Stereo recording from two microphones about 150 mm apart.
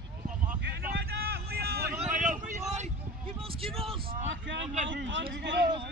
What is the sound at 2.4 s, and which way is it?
Vehicle, 50° right (ahead or behind).